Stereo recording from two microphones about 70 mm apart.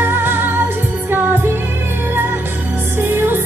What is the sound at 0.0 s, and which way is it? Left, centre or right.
Music, right.